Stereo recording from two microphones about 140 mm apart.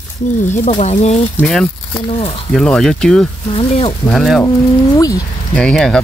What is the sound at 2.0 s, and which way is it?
Speech, 45° left (ahead or behind).